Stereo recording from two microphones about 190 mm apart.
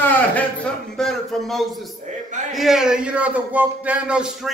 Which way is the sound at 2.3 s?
40° right (ahead or behind).